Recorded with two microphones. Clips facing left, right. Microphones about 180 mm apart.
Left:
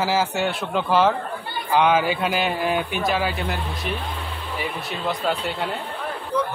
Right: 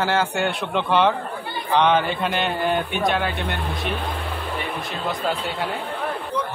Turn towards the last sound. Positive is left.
turn(degrees=0)  # may be behind; listen again after turning